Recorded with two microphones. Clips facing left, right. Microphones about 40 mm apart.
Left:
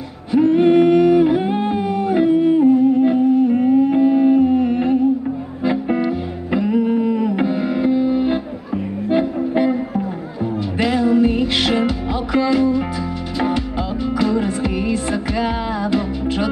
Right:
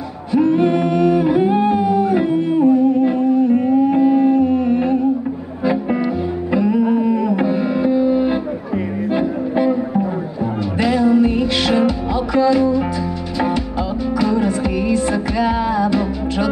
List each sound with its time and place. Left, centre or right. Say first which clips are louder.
0.3 s music: left 2 dB; centre
2.1 s music: left 2 dB; centre